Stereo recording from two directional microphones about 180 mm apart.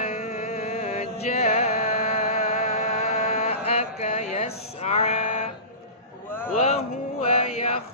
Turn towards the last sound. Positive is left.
turn(degrees=35)  # may be behind; listen again after turning